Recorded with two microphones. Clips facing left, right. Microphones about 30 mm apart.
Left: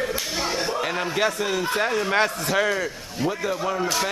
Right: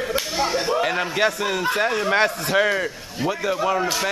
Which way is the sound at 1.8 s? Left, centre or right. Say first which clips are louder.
Right 2 dB; centre.